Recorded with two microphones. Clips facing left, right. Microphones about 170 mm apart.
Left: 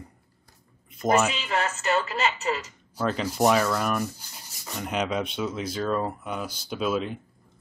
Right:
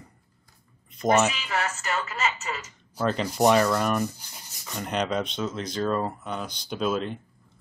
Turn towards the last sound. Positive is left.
turn(degrees=5)  # may be behind; listen again after turning